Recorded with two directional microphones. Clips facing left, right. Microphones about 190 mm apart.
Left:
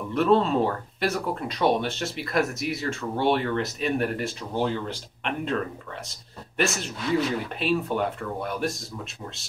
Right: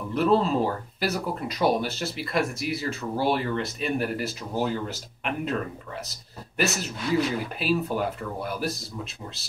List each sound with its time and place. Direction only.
0.1 s speech: centre (ahead or behind)